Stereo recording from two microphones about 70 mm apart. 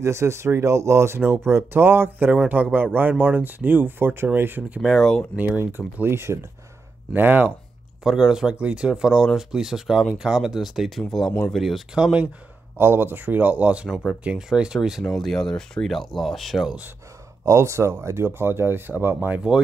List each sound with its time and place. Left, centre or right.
0.0 s speech: right
4.8 s speech: centre
5.6 s speech: right
7.1 s speech: right
8.0 s speech: centre
11.1 s speech: centre
11.9 s speech: centre
12.7 s speech: right; by 15.0 s centre
15.0 s speech: centre
17.5 s speech: right